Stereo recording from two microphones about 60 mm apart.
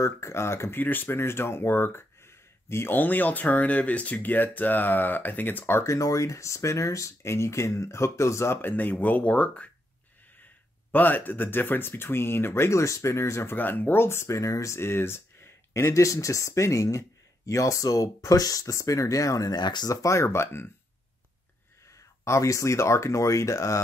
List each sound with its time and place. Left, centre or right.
0.0 s speech: left
0.7 s speech: left
3.0 s speech: left
5.8 s speech: left
8.5 s speech: left
10.9 s speech: left
13.6 s speech: left
14.0 s speech: left
14.8 s speech: left
21.9 s speech: left